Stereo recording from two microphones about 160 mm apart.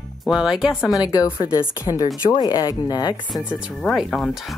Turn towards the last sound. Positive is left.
turn(degrees=0)  # may be behind; listen again after turning